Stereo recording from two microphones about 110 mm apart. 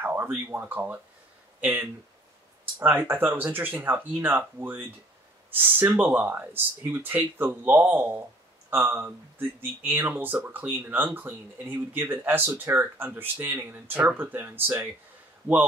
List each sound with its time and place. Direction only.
0.0 s speech: 20° right (ahead or behind)